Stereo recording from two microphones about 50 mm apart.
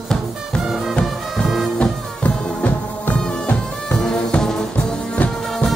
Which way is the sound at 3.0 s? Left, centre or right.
Left.